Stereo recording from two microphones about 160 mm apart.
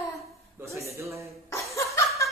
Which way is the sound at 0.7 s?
20° right (ahead or behind).